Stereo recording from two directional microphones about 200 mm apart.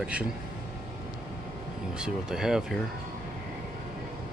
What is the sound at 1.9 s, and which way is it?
Speech, 5° right (ahead or behind).